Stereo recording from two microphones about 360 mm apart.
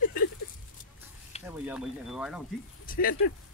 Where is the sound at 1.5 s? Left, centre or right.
Centre.